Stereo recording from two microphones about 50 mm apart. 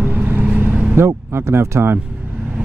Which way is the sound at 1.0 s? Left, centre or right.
Right.